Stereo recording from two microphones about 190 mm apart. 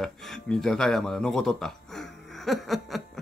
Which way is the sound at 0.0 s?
Centre (ahead or behind).